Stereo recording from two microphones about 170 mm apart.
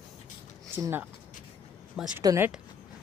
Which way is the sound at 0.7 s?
15° right (ahead or behind).